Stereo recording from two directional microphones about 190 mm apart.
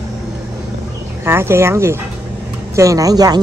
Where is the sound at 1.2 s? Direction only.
10° right (ahead or behind).